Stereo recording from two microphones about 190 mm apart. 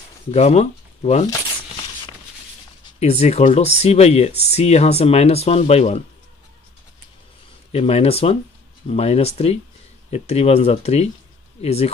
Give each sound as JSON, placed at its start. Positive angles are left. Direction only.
{"t": 0.3, "sound": "speech", "side_deg": 35}
{"t": 3.0, "sound": "speech", "side_deg": 35}
{"t": 7.7, "sound": "speech", "side_deg": 30}